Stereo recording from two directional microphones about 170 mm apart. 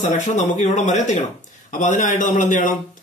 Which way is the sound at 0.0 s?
45° left (ahead or behind).